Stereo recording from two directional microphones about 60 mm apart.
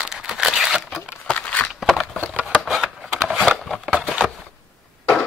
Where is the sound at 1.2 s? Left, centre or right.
Centre.